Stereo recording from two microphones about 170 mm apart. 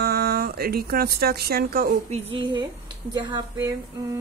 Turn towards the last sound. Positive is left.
turn(degrees=-15)  # may be behind; listen again after turning